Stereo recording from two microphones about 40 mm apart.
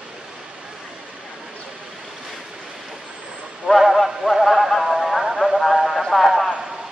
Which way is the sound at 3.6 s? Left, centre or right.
Centre.